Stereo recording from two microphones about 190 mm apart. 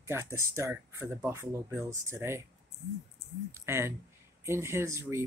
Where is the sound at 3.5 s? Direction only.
15° right (ahead or behind).